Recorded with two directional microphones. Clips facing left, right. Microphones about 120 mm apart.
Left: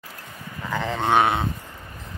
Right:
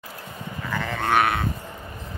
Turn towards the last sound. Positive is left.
turn(degrees=20)  # may be behind; listen again after turning